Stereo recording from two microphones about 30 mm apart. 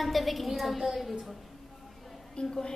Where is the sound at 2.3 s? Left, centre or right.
Left.